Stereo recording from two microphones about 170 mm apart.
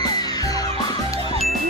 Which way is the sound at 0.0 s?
20° left (ahead or behind).